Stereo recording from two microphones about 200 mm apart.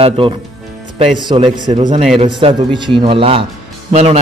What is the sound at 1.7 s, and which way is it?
A man's voice, 35° right (ahead or behind).